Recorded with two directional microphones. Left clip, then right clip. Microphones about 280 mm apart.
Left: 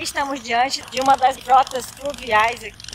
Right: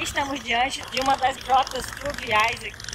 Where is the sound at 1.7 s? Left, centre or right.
Left.